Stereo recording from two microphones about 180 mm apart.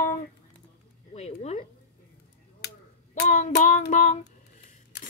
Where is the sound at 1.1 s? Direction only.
35° left (ahead or behind).